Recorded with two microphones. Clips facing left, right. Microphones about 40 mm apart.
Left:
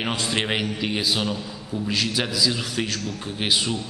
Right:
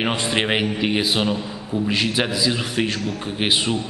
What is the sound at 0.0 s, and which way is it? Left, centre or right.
A man's voice, centre.